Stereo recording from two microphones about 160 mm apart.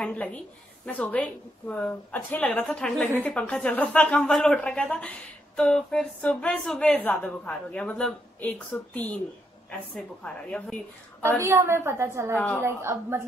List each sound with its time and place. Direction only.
0.0 s a woman's voice: 10° left (ahead or behind)
11.4 s a woman's voice: 15° right (ahead or behind)